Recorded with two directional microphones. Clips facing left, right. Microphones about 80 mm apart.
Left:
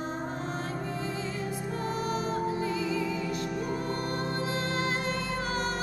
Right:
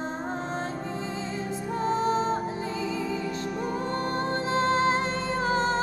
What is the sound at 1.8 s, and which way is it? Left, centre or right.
Music, right.